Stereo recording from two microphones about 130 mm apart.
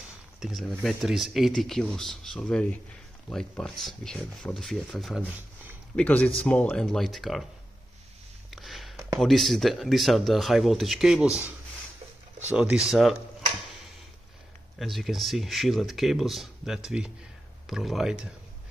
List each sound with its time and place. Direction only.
0.4 s speech: centre (ahead or behind)
5.9 s speech: 10° left (ahead or behind)
8.5 s a sound: centre (ahead or behind)
9.2 s speech: centre (ahead or behind)
14.8 s speech: centre (ahead or behind)